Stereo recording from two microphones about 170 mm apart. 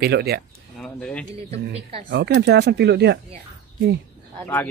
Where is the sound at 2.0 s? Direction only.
80° right.